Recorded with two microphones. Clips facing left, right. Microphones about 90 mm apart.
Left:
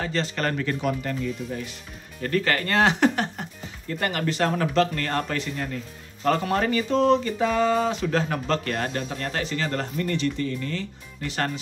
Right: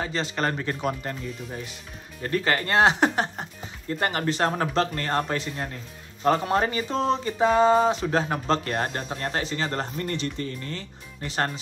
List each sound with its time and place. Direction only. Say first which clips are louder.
0.0 s speech: even; 20° right (ahead or behind)
2.2 s speech: left 1 dB; 20° right (ahead or behind)